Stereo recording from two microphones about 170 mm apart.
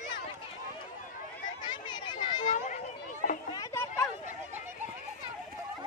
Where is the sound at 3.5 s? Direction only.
20° left (ahead or behind).